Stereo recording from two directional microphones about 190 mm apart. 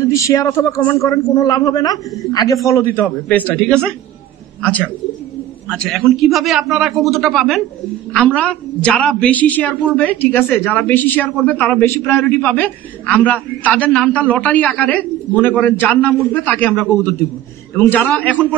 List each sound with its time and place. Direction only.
0.0 s a woman's voice: 15° left (ahead or behind)